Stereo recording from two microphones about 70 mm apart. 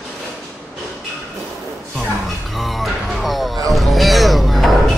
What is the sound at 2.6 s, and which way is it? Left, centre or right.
Music, centre.